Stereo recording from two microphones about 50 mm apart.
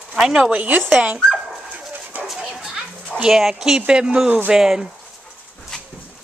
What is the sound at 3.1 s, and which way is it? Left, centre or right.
Speech, centre.